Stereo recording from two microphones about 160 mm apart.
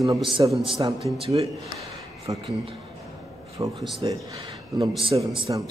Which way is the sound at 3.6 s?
20° right (ahead or behind).